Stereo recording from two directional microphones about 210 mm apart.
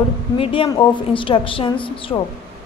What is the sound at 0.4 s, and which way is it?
A woman's voice, 25° left (ahead or behind).